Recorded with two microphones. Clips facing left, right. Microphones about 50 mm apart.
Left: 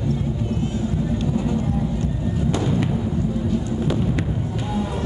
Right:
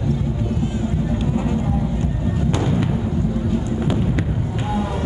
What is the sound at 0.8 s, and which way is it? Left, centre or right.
Music, right.